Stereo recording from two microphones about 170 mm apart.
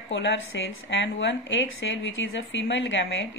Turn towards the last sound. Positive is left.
turn(degrees=90)